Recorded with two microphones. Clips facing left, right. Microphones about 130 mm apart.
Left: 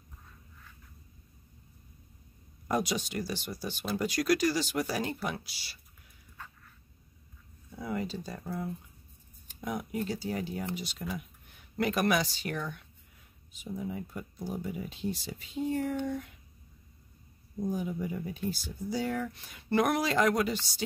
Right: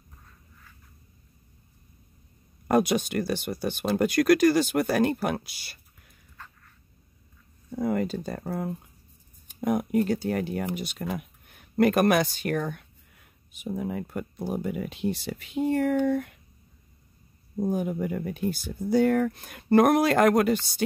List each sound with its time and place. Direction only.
2.7 s speech: 55° right (ahead or behind)
7.7 s speech: 50° right (ahead or behind)
17.6 s speech: 60° right (ahead or behind)